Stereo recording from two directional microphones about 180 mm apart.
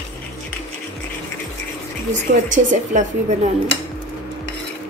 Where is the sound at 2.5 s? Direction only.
45° right (ahead or behind).